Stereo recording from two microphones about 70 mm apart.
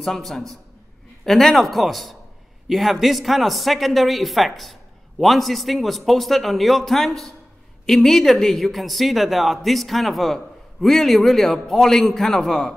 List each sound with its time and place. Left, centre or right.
0.0 s speech: centre